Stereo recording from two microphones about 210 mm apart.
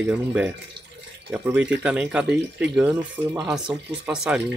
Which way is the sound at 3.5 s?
5° right (ahead or behind).